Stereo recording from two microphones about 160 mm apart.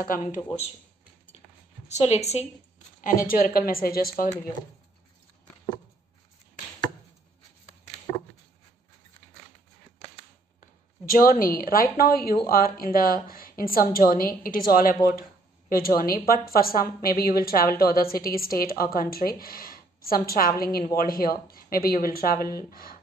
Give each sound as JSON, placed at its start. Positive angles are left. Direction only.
{"t": 0.0, "sound": "a woman's voice", "side_deg": 60}
{"t": 1.9, "sound": "a woman's voice", "side_deg": 40}
{"t": 3.0, "sound": "a woman's voice", "side_deg": 60}
{"t": 11.1, "sound": "a woman's voice", "side_deg": 65}